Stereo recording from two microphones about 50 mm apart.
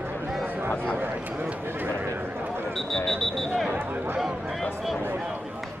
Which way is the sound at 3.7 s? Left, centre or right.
Right.